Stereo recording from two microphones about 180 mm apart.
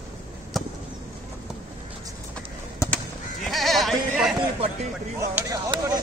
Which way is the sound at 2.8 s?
15° left (ahead or behind).